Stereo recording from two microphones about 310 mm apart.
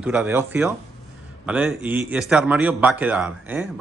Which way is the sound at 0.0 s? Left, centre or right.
Centre.